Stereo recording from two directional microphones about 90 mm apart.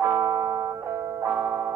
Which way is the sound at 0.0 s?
25° right (ahead or behind).